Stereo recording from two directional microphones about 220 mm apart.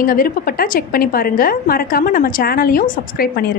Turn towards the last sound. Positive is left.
turn(degrees=45)  # may be behind; listen again after turning